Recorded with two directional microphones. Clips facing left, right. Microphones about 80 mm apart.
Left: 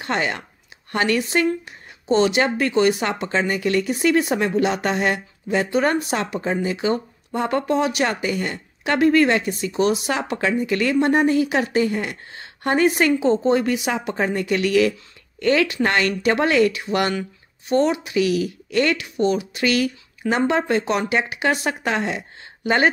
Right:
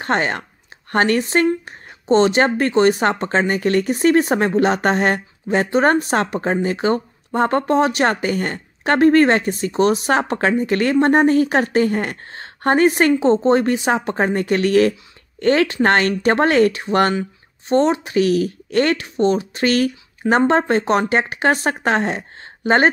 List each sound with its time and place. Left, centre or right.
0.0 s speech: right